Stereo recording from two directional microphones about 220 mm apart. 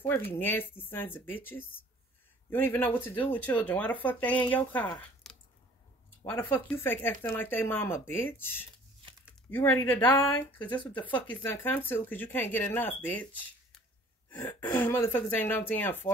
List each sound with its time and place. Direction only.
0.0 s speech: 10° left (ahead or behind)
4.9 s a sound: 5° left (ahead or behind)
6.3 s speech: 10° left (ahead or behind)